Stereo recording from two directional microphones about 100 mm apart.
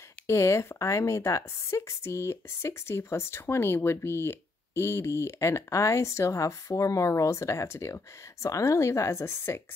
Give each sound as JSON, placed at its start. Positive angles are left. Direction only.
{"t": 0.3, "sound": "speech", "side_deg": 30}